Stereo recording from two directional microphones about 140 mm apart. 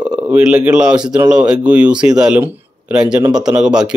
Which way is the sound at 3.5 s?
5° right (ahead or behind).